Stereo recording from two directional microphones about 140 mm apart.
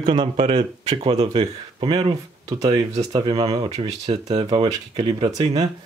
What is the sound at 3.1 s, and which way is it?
Speech, 35° right (ahead or behind).